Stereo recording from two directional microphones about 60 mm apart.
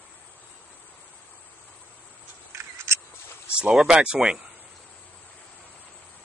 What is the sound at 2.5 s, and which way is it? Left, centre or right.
Scissors, right.